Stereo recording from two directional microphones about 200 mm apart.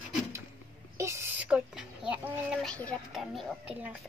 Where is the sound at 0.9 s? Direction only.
15° right (ahead or behind).